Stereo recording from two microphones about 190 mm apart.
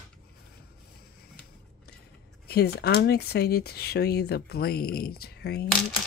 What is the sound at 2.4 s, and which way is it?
Speech, 55° left (ahead or behind).